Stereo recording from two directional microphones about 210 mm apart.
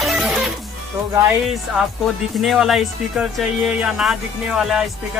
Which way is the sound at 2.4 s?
Centre (ahead or behind).